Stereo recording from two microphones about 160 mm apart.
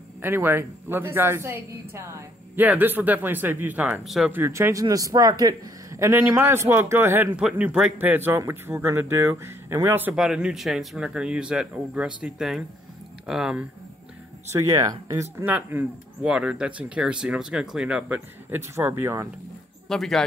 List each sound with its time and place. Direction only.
0.2 s speech: 15° right (ahead or behind)
4.3 s speech: 15° right (ahead or behind)
14.5 s speech: 20° right (ahead or behind)
19.9 s speech: centre (ahead or behind)